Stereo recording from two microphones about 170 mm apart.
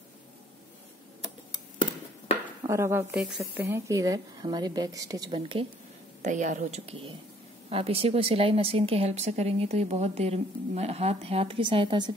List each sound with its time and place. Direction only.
2.7 s speech: 15° right (ahead or behind)
3.2 s speech: 5° right (ahead or behind)
3.6 s a woman's voice: 15° right (ahead or behind)
5.4 s speech: 35° right (ahead or behind)
6.2 s a woman's voice: 45° right (ahead or behind); by 12.1 s 30° right (ahead or behind)